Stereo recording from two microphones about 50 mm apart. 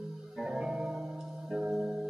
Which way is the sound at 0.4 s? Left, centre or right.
Centre.